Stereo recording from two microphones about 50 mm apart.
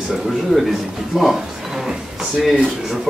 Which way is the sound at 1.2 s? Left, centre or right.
Centre.